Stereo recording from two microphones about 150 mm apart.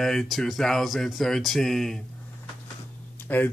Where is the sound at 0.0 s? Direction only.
Centre (ahead or behind).